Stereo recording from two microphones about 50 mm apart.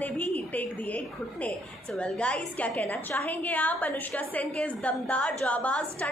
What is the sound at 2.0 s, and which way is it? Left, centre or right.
A woman's voice, left.